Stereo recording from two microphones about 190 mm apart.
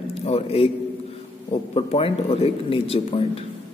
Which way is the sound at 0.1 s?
30° left (ahead or behind).